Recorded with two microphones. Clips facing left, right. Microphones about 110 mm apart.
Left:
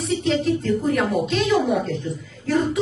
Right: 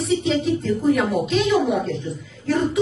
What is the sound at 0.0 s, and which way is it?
Speech, centre (ahead or behind).